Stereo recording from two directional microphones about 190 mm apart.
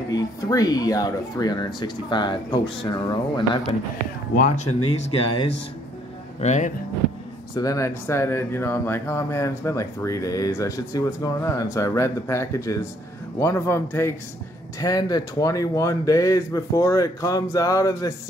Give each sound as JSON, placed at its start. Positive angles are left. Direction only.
{"t": 0.1, "sound": "speech", "side_deg": 20}
{"t": 4.8, "sound": "speech", "side_deg": 30}
{"t": 6.4, "sound": "speech", "side_deg": 40}
{"t": 7.5, "sound": "speech", "side_deg": 20}